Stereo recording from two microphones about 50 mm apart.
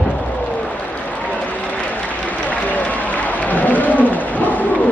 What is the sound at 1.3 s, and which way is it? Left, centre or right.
Run, left.